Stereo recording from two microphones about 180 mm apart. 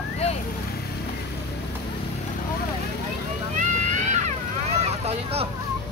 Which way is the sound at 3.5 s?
40° right (ahead or behind).